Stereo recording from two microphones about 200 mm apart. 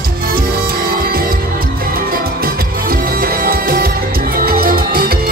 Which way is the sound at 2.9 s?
45° right (ahead or behind).